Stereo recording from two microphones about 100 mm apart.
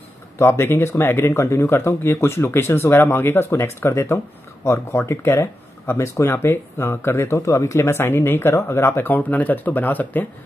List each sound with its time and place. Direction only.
0.4 s speech: 25° left (ahead or behind)